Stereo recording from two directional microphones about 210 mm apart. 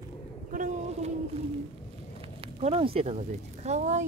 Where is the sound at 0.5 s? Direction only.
40° right (ahead or behind).